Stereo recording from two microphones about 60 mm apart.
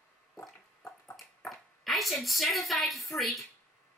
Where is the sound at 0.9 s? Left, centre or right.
Left.